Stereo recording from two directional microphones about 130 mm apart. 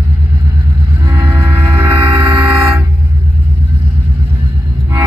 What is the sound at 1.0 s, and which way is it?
Vehicle, 20° right (ahead or behind).